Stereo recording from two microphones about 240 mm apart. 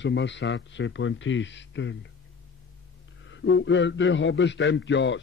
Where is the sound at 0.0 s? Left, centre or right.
Left.